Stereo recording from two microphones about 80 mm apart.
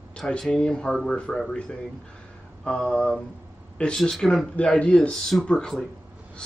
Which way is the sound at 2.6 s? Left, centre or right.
Centre.